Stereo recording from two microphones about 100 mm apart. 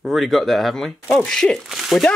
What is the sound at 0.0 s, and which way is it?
Speech, centre (ahead or behind).